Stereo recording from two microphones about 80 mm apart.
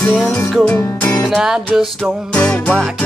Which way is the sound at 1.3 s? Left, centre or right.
Centre.